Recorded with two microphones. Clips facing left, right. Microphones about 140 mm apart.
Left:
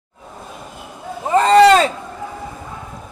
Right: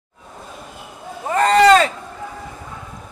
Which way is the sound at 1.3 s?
25° left (ahead or behind).